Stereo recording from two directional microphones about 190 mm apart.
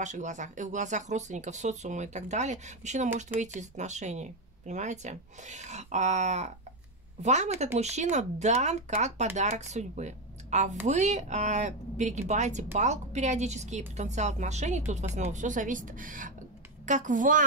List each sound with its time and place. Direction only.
0.0 s a woman's voice: 40° right (ahead or behind)